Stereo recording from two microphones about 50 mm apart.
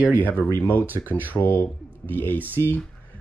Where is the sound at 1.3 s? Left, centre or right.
Left.